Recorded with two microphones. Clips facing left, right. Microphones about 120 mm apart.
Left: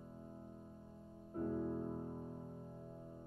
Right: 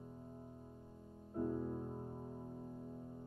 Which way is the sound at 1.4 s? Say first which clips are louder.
Even; 5° right (ahead or behind).